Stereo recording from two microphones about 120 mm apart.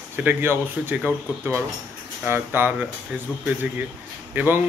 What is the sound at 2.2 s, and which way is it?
Speech, 15° right (ahead or behind).